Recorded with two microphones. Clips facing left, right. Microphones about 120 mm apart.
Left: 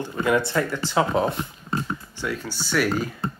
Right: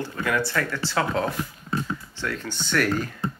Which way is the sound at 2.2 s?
10° left (ahead or behind).